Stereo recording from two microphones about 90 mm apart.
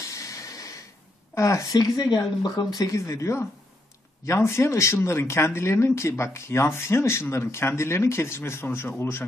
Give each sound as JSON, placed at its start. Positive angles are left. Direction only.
{"t": 0.0, "sound": "snort", "side_deg": 35}
{"t": 1.3, "sound": "a woman's voice", "side_deg": 35}
{"t": 2.1, "sound": "a woman's voice", "side_deg": 50}